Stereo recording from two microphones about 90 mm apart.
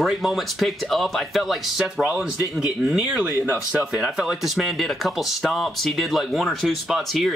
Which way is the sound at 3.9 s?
5° right (ahead or behind).